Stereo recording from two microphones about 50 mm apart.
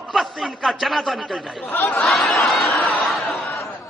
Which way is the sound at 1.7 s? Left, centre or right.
Left.